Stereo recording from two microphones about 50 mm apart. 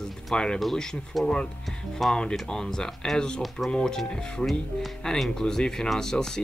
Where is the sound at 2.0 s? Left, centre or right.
Centre.